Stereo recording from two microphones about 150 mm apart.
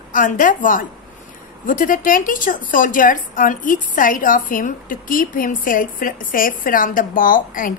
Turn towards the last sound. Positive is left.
turn(degrees=65)  # may be behind; listen again after turning